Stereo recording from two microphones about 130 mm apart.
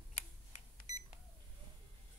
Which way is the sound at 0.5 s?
60° left (ahead or behind).